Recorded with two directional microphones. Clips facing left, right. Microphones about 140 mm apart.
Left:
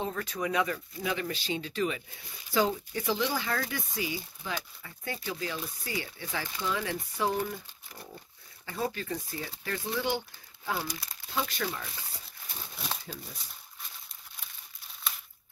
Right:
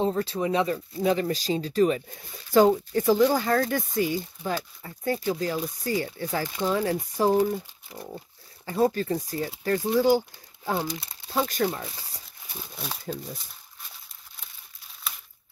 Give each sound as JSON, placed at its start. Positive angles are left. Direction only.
{"t": 0.0, "sound": "speech", "side_deg": -30}
{"t": 10.8, "sound": "speech", "side_deg": -25}
{"t": 11.3, "sound": "speech", "side_deg": -40}
{"t": 13.0, "sound": "speech", "side_deg": -50}